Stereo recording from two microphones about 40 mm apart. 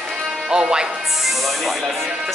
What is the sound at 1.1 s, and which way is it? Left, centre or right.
Speech, centre.